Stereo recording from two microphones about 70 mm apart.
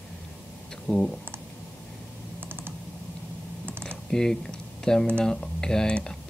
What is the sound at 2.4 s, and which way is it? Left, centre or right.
Typing, right.